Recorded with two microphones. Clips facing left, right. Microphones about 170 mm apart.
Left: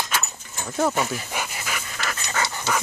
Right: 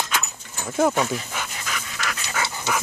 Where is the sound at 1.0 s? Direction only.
5° left (ahead or behind).